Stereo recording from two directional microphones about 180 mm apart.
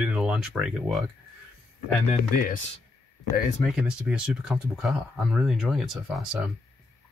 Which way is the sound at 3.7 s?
5° right (ahead or behind).